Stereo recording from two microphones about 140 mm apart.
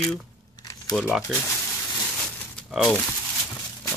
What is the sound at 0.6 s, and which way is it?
Crumpling, 30° left (ahead or behind).